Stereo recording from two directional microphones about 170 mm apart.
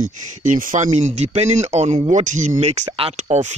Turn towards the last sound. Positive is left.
turn(degrees=-45)  # may be behind; listen again after turning